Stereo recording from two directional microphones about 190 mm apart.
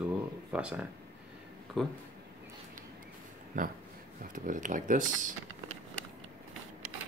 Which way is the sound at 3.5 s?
45° right (ahead or behind).